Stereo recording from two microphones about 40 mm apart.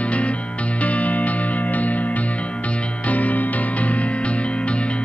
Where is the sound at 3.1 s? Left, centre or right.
Left.